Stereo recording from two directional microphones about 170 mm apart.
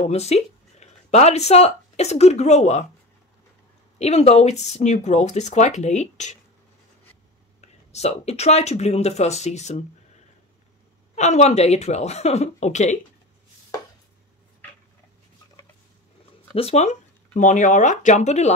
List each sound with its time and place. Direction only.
0.0 s speech: 40° left (ahead or behind)
4.0 s speech: 40° left (ahead or behind)
7.6 s speech: 40° left (ahead or behind)
11.1 s speech: 40° left (ahead or behind)
16.5 s speech: 40° left (ahead or behind)